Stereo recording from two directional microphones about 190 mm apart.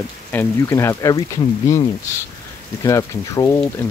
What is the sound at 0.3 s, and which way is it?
Speech, 10° left (ahead or behind).